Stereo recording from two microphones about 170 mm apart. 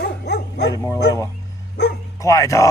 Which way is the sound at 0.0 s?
80° left.